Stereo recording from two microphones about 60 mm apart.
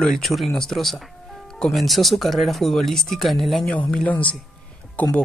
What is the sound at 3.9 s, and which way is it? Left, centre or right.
Speech, left.